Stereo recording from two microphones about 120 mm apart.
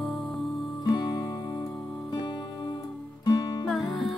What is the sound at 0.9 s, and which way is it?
Music, 35° left (ahead or behind).